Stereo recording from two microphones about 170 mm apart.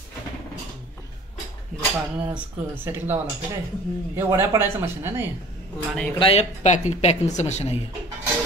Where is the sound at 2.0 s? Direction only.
10° right (ahead or behind).